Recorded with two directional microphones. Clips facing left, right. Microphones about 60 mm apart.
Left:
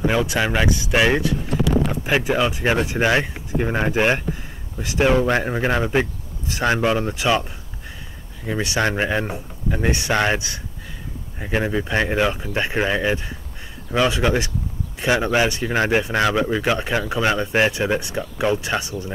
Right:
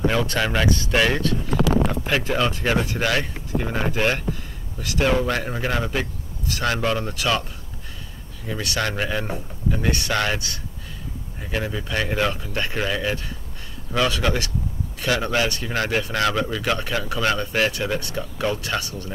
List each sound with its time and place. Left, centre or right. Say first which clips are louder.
0.1 s speech: left 2 dB; centre
8.5 s speech: left 4 dB; left